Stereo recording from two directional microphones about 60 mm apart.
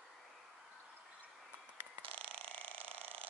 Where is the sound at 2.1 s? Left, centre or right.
Centre.